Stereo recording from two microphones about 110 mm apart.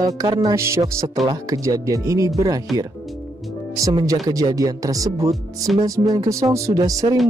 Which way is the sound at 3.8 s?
30° right (ahead or behind).